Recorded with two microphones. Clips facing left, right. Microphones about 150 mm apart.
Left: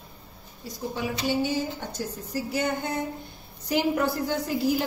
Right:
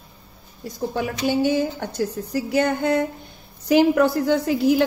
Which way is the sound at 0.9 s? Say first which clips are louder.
Right 5 dB; 65° right (ahead or behind).